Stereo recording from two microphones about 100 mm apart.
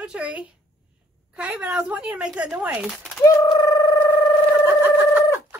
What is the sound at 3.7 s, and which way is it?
Sine wave, 40° left (ahead or behind).